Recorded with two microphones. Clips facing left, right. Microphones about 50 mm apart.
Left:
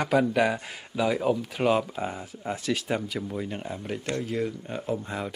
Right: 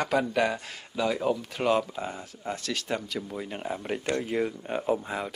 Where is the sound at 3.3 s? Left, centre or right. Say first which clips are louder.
Even; centre.